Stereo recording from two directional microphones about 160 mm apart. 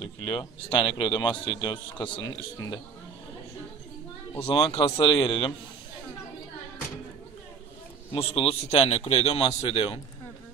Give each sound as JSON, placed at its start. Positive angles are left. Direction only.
{"t": 0.0, "sound": "a man's voice", "side_deg": 25}
{"t": 4.7, "sound": "a man's voice", "side_deg": 40}
{"t": 8.1, "sound": "a man's voice", "side_deg": 35}